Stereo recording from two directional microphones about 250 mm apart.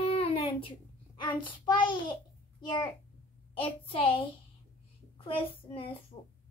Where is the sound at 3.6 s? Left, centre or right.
Left.